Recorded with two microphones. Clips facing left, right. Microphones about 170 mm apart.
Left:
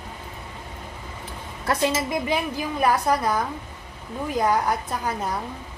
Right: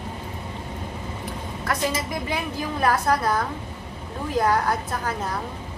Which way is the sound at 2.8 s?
15° left (ahead or behind).